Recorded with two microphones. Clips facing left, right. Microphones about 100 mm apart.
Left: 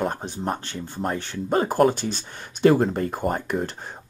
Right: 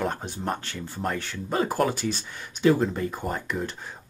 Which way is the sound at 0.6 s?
30° left (ahead or behind).